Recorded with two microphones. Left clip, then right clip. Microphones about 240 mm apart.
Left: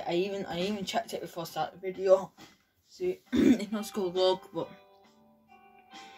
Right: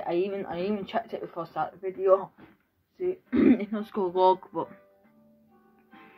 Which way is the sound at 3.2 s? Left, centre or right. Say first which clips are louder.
Right 3 dB; left.